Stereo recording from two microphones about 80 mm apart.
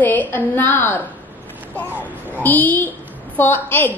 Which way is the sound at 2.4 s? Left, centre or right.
Left.